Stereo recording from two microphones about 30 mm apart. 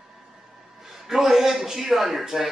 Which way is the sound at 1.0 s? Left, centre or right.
Centre.